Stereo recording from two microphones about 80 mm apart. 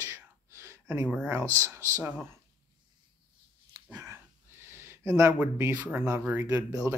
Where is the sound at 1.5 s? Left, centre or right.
Right.